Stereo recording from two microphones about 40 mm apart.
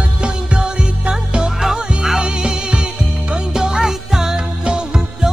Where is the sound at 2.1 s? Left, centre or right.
Centre.